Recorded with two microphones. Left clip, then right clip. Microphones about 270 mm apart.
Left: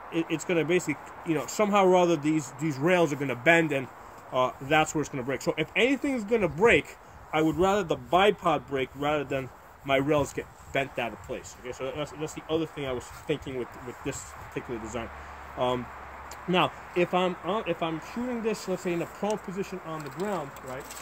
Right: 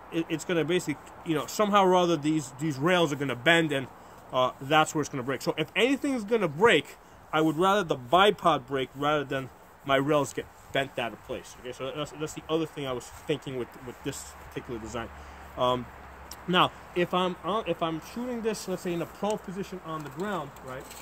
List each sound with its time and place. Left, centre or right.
0.1 s speech: right
0.8 s speech: centre